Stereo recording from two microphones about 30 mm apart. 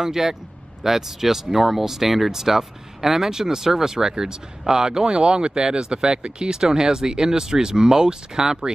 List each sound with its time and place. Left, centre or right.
0.0 s speech: centre
5.1 s speech: right